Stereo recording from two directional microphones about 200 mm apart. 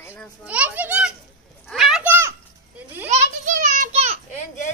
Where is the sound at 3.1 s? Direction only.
40° right (ahead or behind).